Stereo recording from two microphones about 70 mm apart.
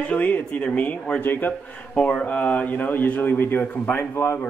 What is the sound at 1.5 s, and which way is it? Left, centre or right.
A man's voice, centre.